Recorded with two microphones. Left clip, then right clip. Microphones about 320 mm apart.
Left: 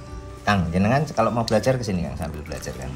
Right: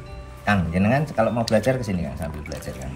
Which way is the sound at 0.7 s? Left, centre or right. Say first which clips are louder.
Even; centre.